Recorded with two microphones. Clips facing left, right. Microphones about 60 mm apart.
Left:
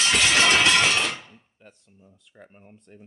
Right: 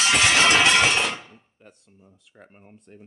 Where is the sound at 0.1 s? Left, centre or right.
Right.